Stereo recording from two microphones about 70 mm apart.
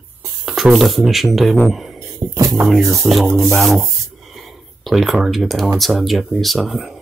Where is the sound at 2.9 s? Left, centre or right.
Centre.